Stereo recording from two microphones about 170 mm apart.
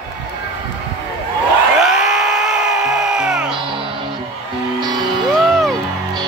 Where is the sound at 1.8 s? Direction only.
5° right (ahead or behind).